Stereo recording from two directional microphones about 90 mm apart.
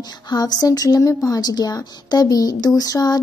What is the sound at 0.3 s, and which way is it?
A woman's voice, 50° left (ahead or behind).